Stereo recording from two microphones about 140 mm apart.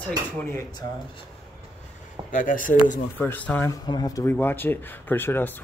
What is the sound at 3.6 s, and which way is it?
Speech, 30° left (ahead or behind).